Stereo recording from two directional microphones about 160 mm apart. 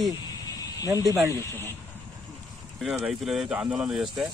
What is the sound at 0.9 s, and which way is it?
Speech, 20° right (ahead or behind).